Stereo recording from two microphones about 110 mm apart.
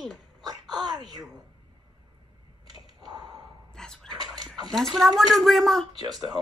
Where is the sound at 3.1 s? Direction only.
40° right (ahead or behind).